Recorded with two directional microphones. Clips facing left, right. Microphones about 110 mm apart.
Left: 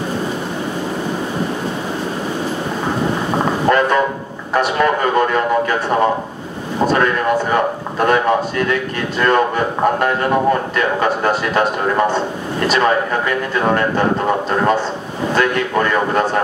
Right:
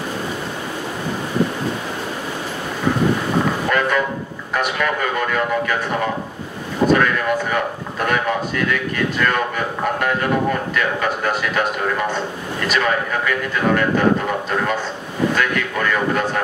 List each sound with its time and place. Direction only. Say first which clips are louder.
3.6 s vehicle: left 5 dB; 35° left (ahead or behind)
4.6 s a sound: left 5 dB; 35° left (ahead or behind)
15.3 s speech: left 5 dB; 35° left (ahead or behind)